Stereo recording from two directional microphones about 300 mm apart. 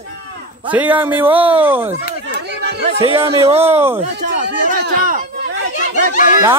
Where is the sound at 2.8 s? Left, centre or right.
Centre.